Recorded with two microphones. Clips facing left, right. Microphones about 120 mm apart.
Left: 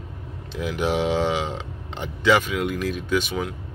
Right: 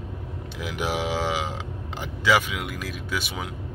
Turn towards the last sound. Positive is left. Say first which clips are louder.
# left 7 dB
turn(degrees=-10)  # may be behind; listen again after turning